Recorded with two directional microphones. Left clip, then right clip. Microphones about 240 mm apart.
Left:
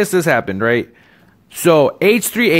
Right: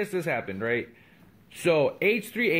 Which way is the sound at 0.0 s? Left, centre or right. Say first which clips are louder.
Left 14 dB; left.